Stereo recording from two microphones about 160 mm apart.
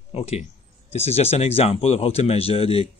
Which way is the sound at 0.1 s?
40° left (ahead or behind).